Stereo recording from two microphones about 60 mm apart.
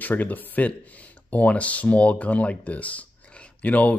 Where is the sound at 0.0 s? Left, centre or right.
Left.